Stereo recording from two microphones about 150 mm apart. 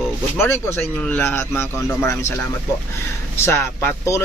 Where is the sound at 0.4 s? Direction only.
15° left (ahead or behind).